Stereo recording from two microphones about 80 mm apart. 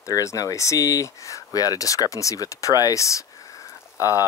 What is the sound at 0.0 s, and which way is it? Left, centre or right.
Speech, left.